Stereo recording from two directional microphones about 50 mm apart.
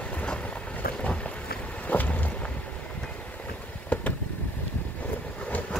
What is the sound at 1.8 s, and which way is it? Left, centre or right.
Boat, left.